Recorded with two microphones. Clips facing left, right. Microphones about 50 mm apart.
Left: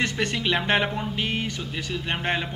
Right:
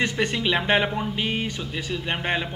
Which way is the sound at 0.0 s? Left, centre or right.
Centre.